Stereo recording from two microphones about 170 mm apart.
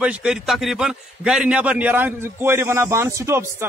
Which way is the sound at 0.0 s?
5° right (ahead or behind).